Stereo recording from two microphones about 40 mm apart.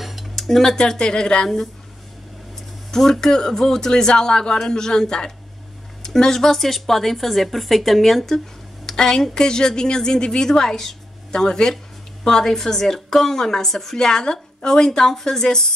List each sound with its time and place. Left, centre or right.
0.0 s cutlery: centre
0.7 s speech: centre
2.9 s a woman's voice: centre